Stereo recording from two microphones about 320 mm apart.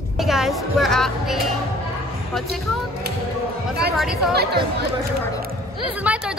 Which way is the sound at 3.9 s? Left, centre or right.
Centre.